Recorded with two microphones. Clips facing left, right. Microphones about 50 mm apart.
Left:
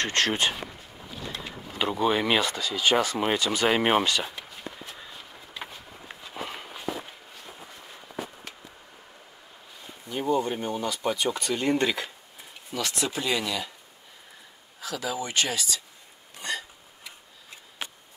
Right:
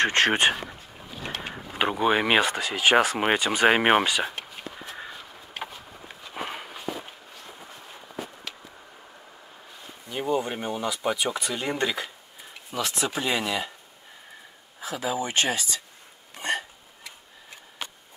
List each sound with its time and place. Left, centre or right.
0.0 s speech: right
0.3 s speech: right
1.2 s a sound: right
1.8 s speech: right
4.0 s speech: centre
6.3 s walk: centre
10.2 s speech: centre
11.7 s speech: centre
12.7 s speech: right
14.8 s speech: right
16.3 s hiccup: right